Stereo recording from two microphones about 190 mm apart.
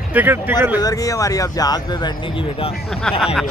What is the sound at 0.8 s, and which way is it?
Speech, 20° left (ahead or behind).